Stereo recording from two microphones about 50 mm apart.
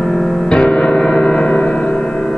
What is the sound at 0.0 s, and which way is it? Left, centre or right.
Music, centre.